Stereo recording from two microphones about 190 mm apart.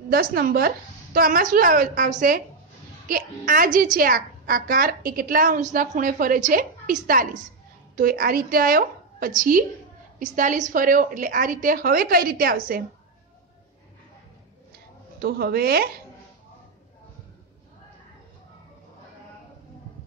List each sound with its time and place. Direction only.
0.1 s a woman's voice: 50° right (ahead or behind)
15.1 s speech: 55° right (ahead or behind)